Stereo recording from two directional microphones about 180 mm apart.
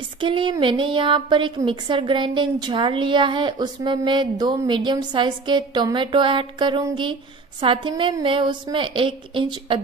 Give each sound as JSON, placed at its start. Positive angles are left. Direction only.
{"t": 0.2, "sound": "a woman's voice", "side_deg": -25}